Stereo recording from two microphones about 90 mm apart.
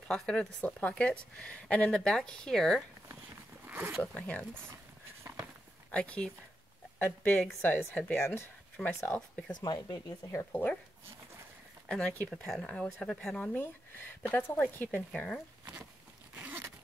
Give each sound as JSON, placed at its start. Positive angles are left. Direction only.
{"t": 0.1, "sound": "speech", "side_deg": 10}
{"t": 3.6, "sound": "a sound", "side_deg": -25}
{"t": 4.0, "sound": "speech", "side_deg": 15}
{"t": 5.9, "sound": "speech", "side_deg": 15}
{"t": 7.9, "sound": "speech", "side_deg": 15}
{"t": 9.5, "sound": "speech", "side_deg": 50}
{"t": 10.3, "sound": "speech", "side_deg": 25}
{"t": 11.9, "sound": "speech", "side_deg": 10}
{"t": 13.5, "sound": "speech", "side_deg": 20}
{"t": 16.3, "sound": "zipper", "side_deg": -15}